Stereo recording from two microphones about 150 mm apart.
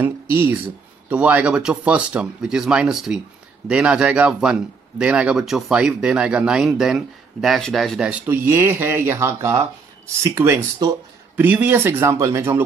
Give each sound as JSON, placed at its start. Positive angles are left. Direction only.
{"t": 1.0, "sound": "speech", "side_deg": -10}